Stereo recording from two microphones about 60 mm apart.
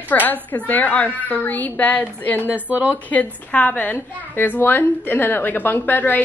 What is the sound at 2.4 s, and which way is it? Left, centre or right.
Speech, right.